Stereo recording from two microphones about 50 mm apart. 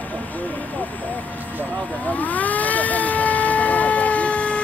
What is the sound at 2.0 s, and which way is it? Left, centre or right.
Vehicle, left.